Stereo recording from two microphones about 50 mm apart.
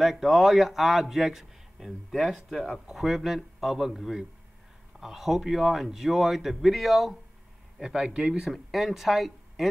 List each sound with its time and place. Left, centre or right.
0.0 s a man's voice: centre
7.8 s speech: centre
8.5 s speech: centre